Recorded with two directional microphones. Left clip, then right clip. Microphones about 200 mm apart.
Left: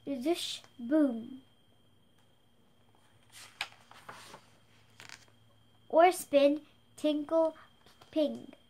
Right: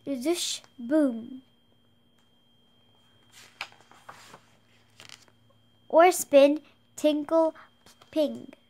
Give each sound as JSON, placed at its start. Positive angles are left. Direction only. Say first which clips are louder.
{"t": 0.0, "sound": "a woman's voice", "louder": "right 4 dB", "side_deg": -40}
{"t": 4.9, "sound": "shuffling cards", "louder": "right 2 dB", "side_deg": -30}
{"t": 5.9, "sound": "a woman's voice", "louder": "right 5 dB", "side_deg": -40}